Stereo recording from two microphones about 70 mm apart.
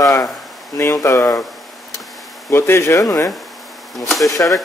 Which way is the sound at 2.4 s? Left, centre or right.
Left.